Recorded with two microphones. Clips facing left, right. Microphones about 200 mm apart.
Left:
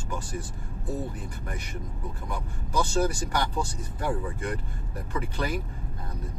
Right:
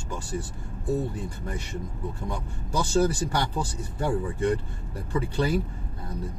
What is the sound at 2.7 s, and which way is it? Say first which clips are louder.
Speech: right 2 dB; 30° right (ahead or behind).